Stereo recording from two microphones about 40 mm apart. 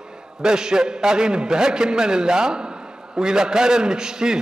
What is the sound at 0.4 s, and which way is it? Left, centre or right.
A man's voice, centre.